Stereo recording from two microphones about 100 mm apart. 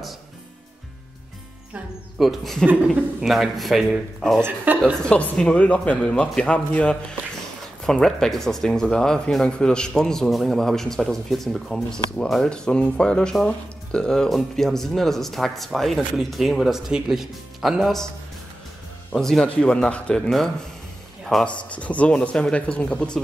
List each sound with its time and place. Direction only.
2.1 s speech: centre (ahead or behind)
2.6 s speech: 15° right (ahead or behind)
3.2 s speech: centre (ahead or behind)
4.5 s speech: 15° right (ahead or behind)
5.0 s speech: 10° left (ahead or behind)
19.1 s speech: 5° left (ahead or behind)
21.6 s speech: 15° left (ahead or behind)